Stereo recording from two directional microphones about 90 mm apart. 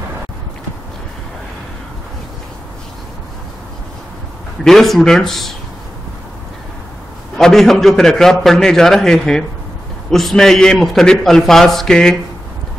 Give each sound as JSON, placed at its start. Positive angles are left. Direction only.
{"t": 4.6, "sound": "a man's voice", "side_deg": 5}
{"t": 7.3, "sound": "a man's voice", "side_deg": 5}